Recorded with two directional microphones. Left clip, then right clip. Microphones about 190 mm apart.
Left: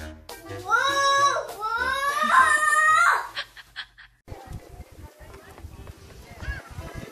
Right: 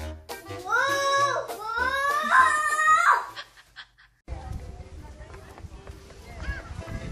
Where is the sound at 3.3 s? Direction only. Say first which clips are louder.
Left 6 dB; 25° left (ahead or behind).